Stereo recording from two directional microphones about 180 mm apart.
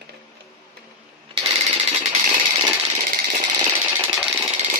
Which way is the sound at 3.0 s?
50° right (ahead or behind).